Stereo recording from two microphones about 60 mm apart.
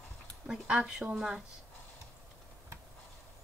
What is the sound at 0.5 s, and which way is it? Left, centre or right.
Speech, centre.